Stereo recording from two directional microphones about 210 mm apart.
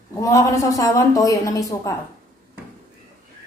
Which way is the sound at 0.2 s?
15° left (ahead or behind).